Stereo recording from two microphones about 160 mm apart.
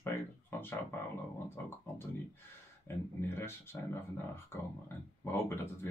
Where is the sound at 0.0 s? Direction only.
15° left (ahead or behind).